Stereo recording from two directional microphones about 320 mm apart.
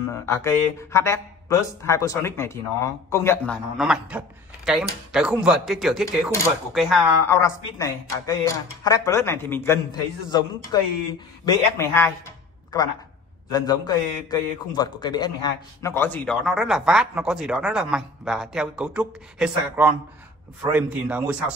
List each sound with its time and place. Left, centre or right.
0.1 s a man's voice: centre
13.5 s a man's voice: centre